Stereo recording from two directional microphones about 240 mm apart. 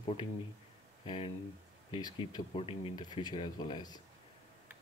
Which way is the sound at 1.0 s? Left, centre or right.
Left.